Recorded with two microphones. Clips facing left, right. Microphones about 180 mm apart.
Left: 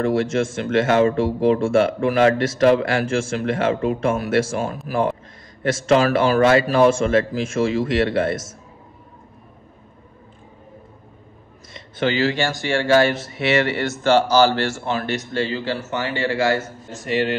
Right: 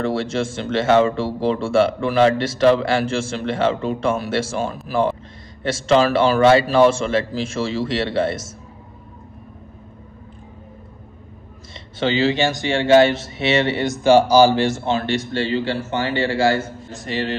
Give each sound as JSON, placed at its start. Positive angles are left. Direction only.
{"t": 0.0, "sound": "speech", "side_deg": -30}
{"t": 11.7, "sound": "speech", "side_deg": -25}